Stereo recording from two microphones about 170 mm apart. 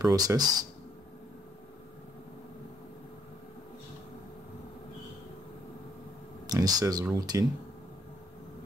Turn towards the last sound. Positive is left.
turn(degrees=-20)  # may be behind; listen again after turning